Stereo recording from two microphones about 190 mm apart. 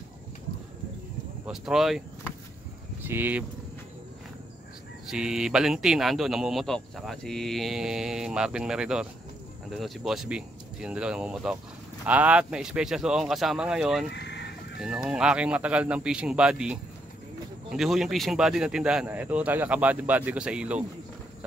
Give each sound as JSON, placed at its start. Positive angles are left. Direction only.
{"t": 1.4, "sound": "speech", "side_deg": 0}
{"t": 5.1, "sound": "speech", "side_deg": -5}
{"t": 14.1, "sound": "chicken", "side_deg": 65}
{"t": 14.8, "sound": "speech", "side_deg": -5}